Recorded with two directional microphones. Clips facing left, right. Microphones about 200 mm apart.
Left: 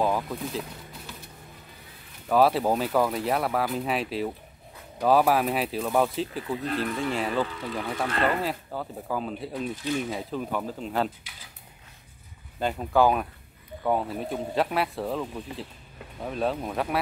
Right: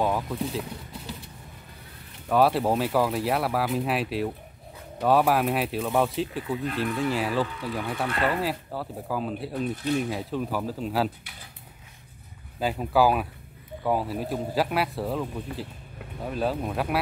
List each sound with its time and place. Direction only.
0.0 s speech: centre (ahead or behind)
2.2 s speech: centre (ahead or behind)
12.5 s speech: 5° right (ahead or behind)